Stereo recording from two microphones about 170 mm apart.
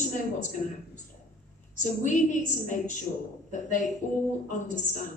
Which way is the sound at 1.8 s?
45° left (ahead or behind).